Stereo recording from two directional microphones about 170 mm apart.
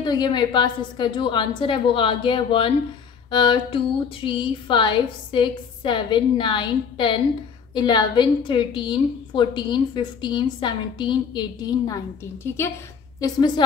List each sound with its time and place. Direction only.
0.0 s a woman's voice: 25° left (ahead or behind)
12.4 s a woman's voice: 15° left (ahead or behind)